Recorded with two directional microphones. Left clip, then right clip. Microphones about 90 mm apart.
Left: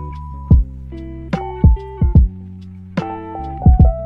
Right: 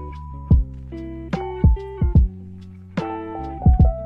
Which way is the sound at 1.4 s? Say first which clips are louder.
Left 2 dB; 40° left (ahead or behind).